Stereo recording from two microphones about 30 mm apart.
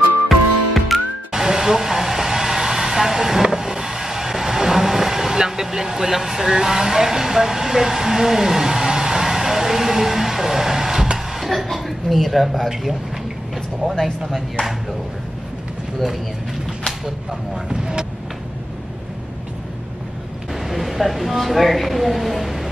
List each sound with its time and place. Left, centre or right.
0.3 s music: centre
0.9 s music: centre
11.3 s cough: centre
17.3 s speech: right
20.6 s speech: centre